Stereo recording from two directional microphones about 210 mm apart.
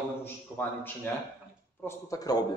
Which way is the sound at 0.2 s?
10° left (ahead or behind).